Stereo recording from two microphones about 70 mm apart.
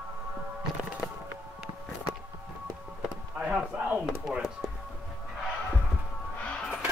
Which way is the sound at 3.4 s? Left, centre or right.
Centre.